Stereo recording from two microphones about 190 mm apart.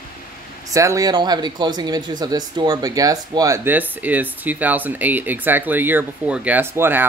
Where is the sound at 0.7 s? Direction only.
15° right (ahead or behind).